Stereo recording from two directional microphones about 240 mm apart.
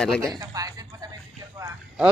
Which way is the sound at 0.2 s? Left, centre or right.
Centre.